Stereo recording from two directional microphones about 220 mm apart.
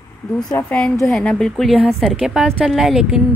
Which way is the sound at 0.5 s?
10° left (ahead or behind).